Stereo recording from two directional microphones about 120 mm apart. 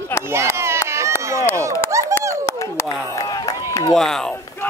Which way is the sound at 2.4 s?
25° left (ahead or behind).